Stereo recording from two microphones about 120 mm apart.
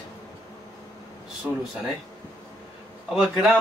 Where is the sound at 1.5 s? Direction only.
10° right (ahead or behind).